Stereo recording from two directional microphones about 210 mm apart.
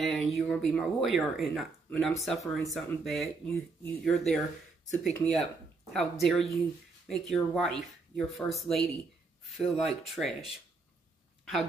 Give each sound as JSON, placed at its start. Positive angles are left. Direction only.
{"t": 0.0, "sound": "speech", "side_deg": 0}
{"t": 4.9, "sound": "speech", "side_deg": 35}
{"t": 5.9, "sound": "speech", "side_deg": 0}